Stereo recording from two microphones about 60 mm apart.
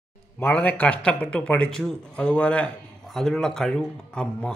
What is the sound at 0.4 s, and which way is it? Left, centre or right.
A man's voice, left.